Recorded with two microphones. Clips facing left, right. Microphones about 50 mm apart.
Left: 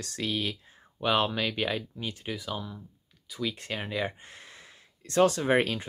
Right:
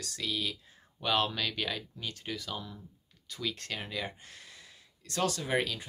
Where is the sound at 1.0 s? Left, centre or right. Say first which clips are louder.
Left 4 dB; left.